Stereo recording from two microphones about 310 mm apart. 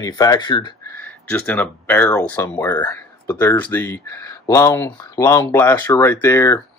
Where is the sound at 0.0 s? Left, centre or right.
Centre.